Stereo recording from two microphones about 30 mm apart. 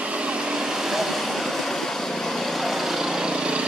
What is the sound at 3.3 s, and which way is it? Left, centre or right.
Vehicle, right.